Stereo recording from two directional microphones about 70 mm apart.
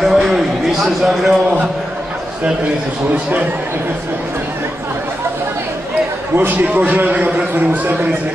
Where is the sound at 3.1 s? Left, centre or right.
Right.